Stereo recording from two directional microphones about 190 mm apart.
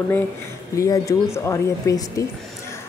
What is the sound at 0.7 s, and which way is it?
A woman's voice, 15° left (ahead or behind).